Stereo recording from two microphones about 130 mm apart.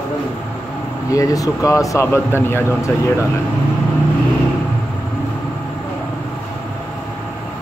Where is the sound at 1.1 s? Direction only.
25° left (ahead or behind).